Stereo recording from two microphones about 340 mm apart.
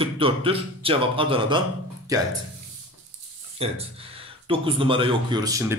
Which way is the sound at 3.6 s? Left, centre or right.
Centre.